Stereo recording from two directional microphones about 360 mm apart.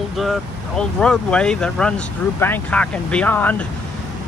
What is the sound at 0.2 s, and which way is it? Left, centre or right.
Speech, centre.